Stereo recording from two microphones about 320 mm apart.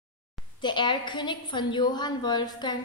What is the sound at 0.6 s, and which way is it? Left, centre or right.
A woman's voice, centre.